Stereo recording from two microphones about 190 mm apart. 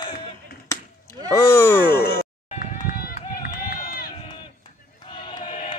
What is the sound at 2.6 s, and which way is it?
Run, 50° left (ahead or behind).